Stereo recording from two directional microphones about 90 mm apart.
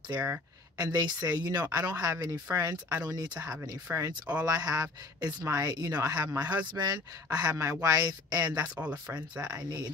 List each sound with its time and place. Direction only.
0.1 s speech: 20° right (ahead or behind)
0.7 s a man's voice: 50° right (ahead or behind)
3.9 s speech: 20° right (ahead or behind)
4.5 s a man's voice: 45° right (ahead or behind)
8.5 s speech: 15° right (ahead or behind)
9.5 s a man's voice: 50° right (ahead or behind)